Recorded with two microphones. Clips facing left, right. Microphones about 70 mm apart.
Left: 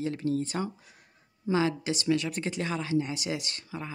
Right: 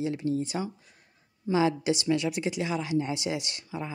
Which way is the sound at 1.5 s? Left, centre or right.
Right.